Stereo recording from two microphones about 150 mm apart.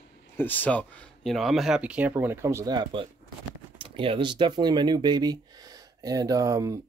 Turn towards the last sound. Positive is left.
turn(degrees=-20)  # may be behind; listen again after turning